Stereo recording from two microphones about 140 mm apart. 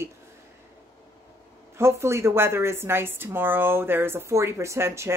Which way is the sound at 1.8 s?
20° right (ahead or behind).